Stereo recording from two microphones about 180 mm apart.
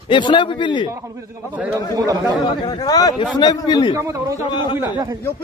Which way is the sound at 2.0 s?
20° right (ahead or behind).